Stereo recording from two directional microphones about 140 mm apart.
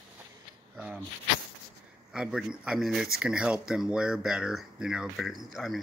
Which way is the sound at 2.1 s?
5° right (ahead or behind).